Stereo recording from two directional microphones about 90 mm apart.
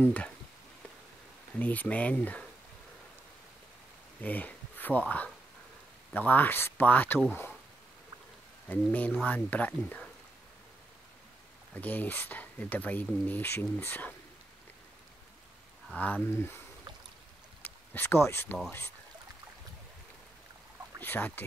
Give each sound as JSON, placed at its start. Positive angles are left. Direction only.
{"t": 0.0, "sound": "speech", "side_deg": 15}
{"t": 1.5, "sound": "speech", "side_deg": 15}
{"t": 4.2, "sound": "speech", "side_deg": 20}
{"t": 8.6, "sound": "speech", "side_deg": 20}
{"t": 11.7, "sound": "speech", "side_deg": 20}
{"t": 16.0, "sound": "speech", "side_deg": 15}
{"t": 21.0, "sound": "speech", "side_deg": 20}